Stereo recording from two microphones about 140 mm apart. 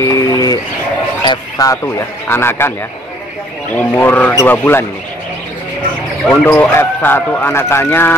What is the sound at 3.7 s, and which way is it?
Speech, 15° left (ahead or behind).